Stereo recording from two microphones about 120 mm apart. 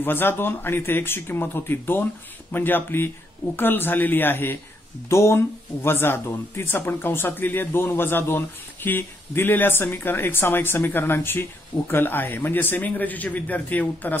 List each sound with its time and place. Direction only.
0.0 s speech: 15° left (ahead or behind)